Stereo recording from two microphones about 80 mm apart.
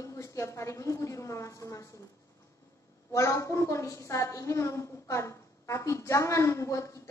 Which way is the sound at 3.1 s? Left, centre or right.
Left.